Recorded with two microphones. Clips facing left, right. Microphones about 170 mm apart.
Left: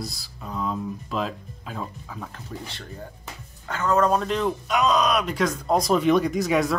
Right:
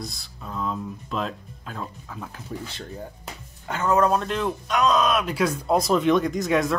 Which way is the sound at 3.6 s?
20° right (ahead or behind).